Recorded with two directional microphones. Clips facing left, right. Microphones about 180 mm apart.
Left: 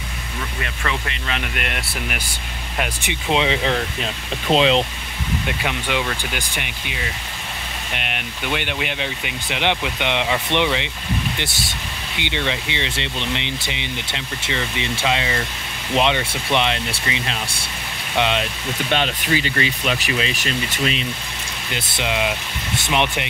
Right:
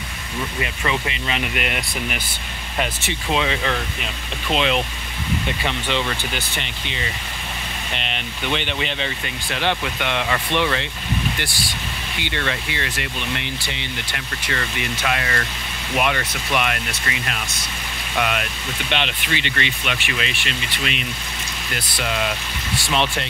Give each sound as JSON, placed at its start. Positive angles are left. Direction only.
{"t": 0.6, "sound": "speech", "side_deg": -10}
{"t": 3.0, "sound": "speech", "side_deg": 20}
{"t": 3.7, "sound": "speech", "side_deg": 35}
{"t": 5.5, "sound": "speech", "side_deg": 10}
{"t": 18.9, "sound": "speech", "side_deg": 40}
{"t": 21.7, "sound": "speech", "side_deg": 25}